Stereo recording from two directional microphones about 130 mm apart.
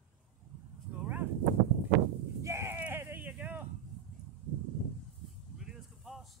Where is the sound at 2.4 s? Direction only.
20° right (ahead or behind).